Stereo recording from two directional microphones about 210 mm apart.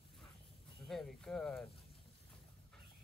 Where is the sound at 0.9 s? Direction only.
Centre (ahead or behind).